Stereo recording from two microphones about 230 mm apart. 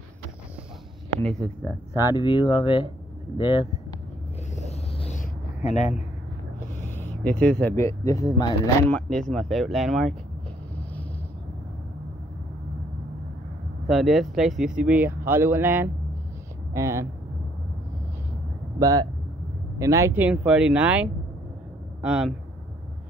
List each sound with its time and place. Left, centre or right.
1.2 s speech: centre
4.6 s vehicle: left
7.0 s speech: centre
8.9 s speech: centre
13.8 s speech: centre
18.8 s speech: centre